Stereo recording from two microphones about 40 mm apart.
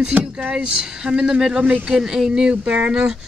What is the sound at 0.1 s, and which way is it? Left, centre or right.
Speech, right.